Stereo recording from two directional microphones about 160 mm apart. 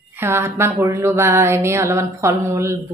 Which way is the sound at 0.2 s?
15° right (ahead or behind).